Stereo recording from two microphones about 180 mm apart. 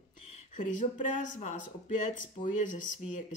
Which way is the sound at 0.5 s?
45° left (ahead or behind).